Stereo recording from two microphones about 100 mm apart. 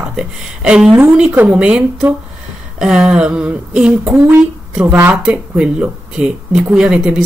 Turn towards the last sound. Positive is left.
turn(degrees=-10)  # may be behind; listen again after turning